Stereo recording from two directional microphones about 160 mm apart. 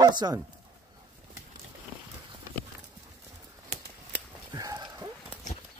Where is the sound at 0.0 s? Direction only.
25° right (ahead or behind).